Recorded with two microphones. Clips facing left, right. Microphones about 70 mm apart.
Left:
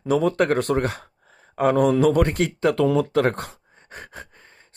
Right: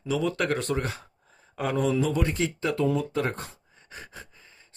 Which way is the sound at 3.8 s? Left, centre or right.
Left.